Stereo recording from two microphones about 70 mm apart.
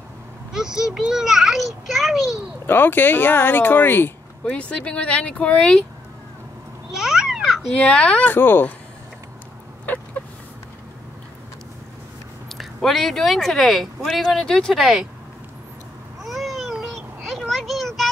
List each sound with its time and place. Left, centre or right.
0.5 s a child's voice: centre
2.6 s speech: left
4.5 s speech: centre
6.9 s a sound: centre
7.7 s speech: centre
12.4 s speech: centre
16.2 s a sound: centre